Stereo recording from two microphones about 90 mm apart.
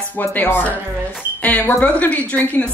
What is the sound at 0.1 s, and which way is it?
A woman's voice, 20° left (ahead or behind).